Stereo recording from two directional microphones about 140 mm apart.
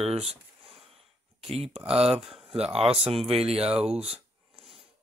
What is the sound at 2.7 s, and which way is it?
Speech, 45° right (ahead or behind).